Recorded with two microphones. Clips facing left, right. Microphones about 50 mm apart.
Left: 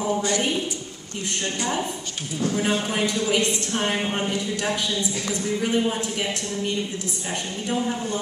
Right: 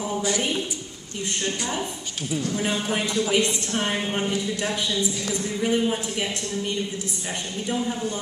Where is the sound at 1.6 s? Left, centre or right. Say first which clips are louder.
Left 3 dB; centre.